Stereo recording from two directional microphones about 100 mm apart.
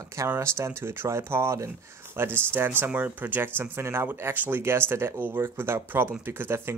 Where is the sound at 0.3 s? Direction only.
25° right (ahead or behind).